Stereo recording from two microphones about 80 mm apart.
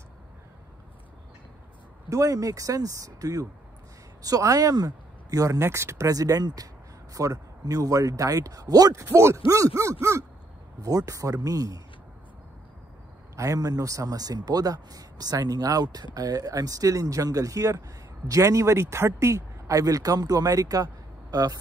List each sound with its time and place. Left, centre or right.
2.0 s speech: right
9.0 s speech: right
13.4 s speech: right